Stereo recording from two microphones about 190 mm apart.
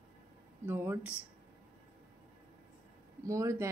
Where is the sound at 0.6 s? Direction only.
10° right (ahead or behind).